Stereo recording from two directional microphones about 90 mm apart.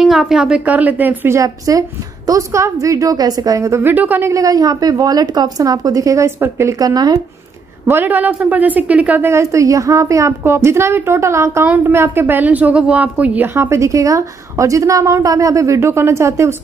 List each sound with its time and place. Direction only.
0.0 s a woman's voice: centre (ahead or behind)
0.7 s speech: 15° right (ahead or behind)
1.3 s a woman's voice: 40° right (ahead or behind)
3.9 s a woman's voice: 20° right (ahead or behind)
4.2 s a woman's voice: 35° right (ahead or behind)
7.8 s speech: 25° right (ahead or behind)
9.3 s a woman's voice: 35° right (ahead or behind)
11.6 s a woman's voice: 20° right (ahead or behind)